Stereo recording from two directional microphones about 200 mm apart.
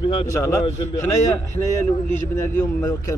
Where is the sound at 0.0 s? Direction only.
25° left (ahead or behind).